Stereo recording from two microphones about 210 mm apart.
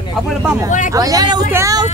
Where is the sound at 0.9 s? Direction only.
15° right (ahead or behind).